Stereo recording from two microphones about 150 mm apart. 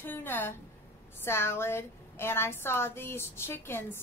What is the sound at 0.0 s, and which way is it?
A woman's voice, 15° left (ahead or behind).